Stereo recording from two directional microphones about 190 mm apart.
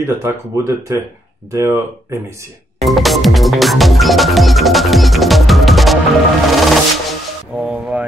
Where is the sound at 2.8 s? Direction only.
Centre (ahead or behind).